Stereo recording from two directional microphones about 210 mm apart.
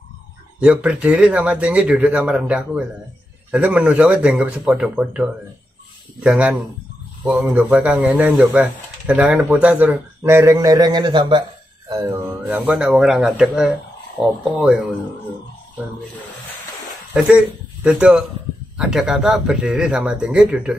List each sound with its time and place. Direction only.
0.6 s speech: 5° right (ahead or behind)
17.1 s a man's voice: 5° right (ahead or behind)